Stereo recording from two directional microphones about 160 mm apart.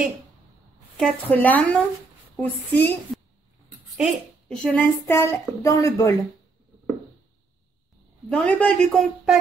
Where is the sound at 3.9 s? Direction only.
Centre (ahead or behind).